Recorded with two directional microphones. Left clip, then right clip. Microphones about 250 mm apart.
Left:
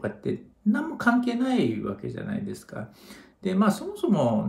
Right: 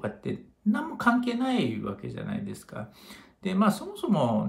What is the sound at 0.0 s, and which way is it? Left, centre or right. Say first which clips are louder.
Speech: left 3 dB; centre.